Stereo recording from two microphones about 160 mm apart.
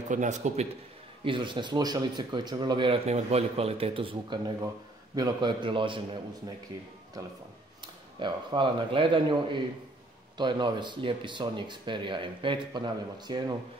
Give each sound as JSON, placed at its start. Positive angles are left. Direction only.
{"t": 0.1, "sound": "a man's voice", "side_deg": -50}
{"t": 1.2, "sound": "a man's voice", "side_deg": -30}
{"t": 7.8, "sound": "a man's voice", "side_deg": -30}